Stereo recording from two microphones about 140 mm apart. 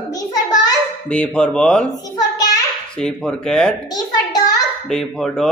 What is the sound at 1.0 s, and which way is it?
Speech, 10° left (ahead or behind).